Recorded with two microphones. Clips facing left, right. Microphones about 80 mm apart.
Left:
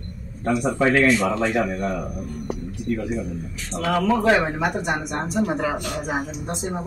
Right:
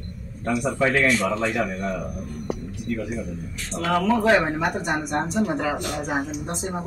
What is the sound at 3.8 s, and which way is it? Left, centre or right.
Speech, centre.